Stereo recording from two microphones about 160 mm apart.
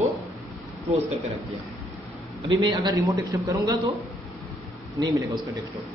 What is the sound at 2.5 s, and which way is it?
A man's voice, 25° right (ahead or behind).